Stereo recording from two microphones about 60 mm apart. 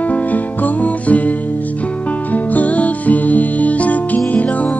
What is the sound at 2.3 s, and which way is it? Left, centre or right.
Music, left.